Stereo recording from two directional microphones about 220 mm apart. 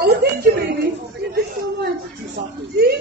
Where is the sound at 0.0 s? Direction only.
45° right (ahead or behind).